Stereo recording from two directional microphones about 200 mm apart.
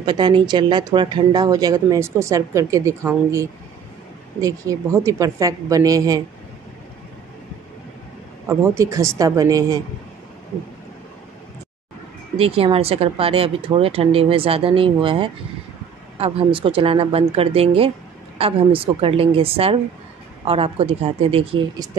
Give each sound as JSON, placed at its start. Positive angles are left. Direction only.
{"t": 0.0, "sound": "speech", "side_deg": -20}
{"t": 4.4, "sound": "a woman's voice", "side_deg": -15}
{"t": 8.5, "sound": "a woman's voice", "side_deg": -15}
{"t": 12.4, "sound": "speech", "side_deg": -30}